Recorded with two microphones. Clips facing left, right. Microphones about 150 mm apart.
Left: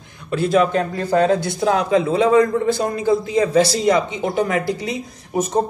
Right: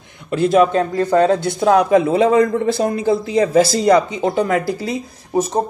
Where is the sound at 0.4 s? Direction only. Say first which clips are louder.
Right 3 dB; 30° right (ahead or behind).